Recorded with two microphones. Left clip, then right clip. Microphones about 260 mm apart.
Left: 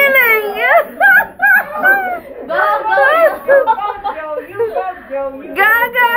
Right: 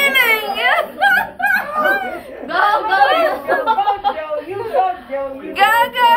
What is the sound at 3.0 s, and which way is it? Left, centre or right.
Chatter, centre.